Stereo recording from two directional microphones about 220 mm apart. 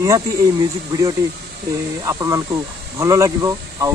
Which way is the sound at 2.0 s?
15° right (ahead or behind).